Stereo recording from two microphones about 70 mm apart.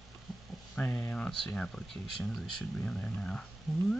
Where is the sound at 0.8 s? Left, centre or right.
Left.